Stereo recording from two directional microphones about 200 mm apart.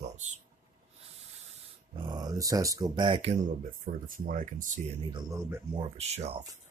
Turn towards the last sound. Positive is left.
turn(degrees=-30)  # may be behind; listen again after turning